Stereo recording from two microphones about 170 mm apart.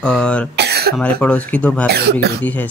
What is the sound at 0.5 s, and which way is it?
Cough, 75° right (ahead or behind).